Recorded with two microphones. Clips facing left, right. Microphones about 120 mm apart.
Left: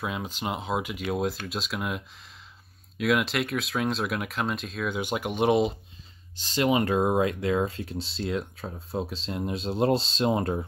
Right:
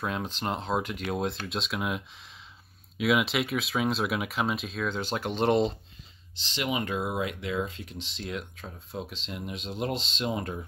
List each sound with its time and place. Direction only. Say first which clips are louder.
0.0 s speech: even; 5° left (ahead or behind)
4.8 s speech: left 2 dB; 10° left (ahead or behind)
6.5 s speech: left 7 dB; 35° left (ahead or behind)